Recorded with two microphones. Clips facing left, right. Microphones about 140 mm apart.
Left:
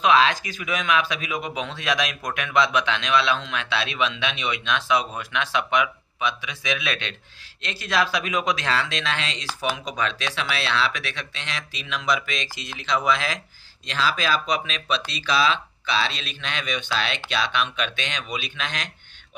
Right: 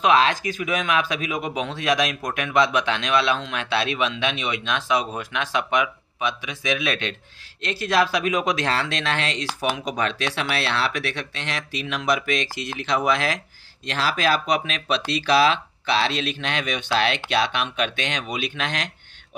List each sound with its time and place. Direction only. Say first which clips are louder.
0.0 s speech: even; 45° right (ahead or behind); by 18.9 s 60° right (ahead or behind)